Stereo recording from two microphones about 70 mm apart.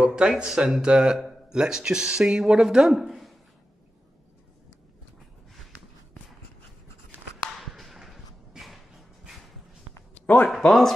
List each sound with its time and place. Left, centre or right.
0.0 s speech: centre
7.5 s a sound: centre
10.2 s speech: left
10.6 s speech: centre